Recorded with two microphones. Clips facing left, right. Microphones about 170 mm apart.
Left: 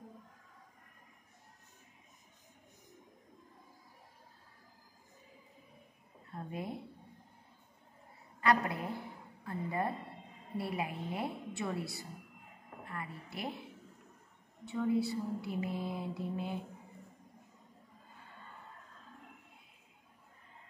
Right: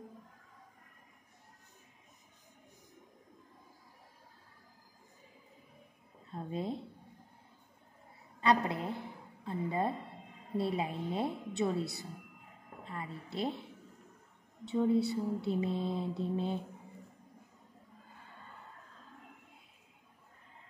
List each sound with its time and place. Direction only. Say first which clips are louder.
6.3 s a woman's voice: right 4 dB; 25° right (ahead or behind)
8.4 s a woman's voice: right 1 dB; 20° right (ahead or behind)
14.6 s a woman's voice: right 3 dB; 20° right (ahead or behind)